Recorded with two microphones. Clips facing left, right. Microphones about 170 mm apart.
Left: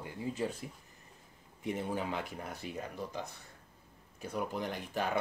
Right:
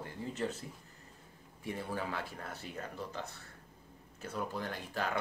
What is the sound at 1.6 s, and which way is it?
Speech, 20° left (ahead or behind).